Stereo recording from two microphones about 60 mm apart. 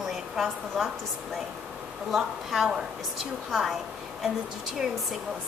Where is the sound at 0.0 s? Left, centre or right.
Centre.